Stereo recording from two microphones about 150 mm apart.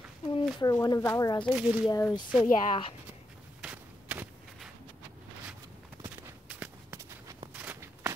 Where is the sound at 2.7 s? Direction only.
35° left (ahead or behind).